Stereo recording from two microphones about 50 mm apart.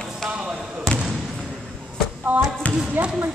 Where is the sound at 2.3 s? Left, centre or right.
Right.